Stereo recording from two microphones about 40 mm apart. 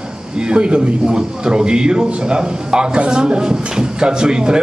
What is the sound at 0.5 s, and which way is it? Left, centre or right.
Speech, right.